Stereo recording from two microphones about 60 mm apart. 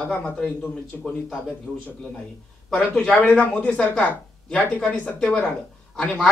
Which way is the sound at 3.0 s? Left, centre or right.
Left.